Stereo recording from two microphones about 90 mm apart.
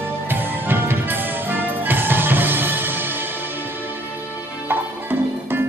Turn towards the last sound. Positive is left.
turn(degrees=-25)  # may be behind; listen again after turning